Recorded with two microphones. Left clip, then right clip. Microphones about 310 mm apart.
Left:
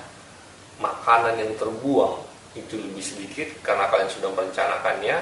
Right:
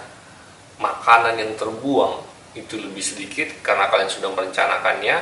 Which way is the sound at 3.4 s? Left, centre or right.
Centre.